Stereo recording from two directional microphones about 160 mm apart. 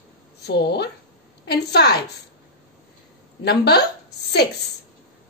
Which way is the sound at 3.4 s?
90° left.